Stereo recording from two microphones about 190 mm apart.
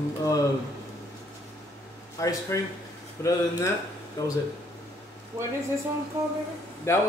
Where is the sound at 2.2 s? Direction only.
15° left (ahead or behind).